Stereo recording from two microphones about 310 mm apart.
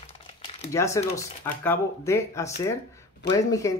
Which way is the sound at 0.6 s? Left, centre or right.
Centre.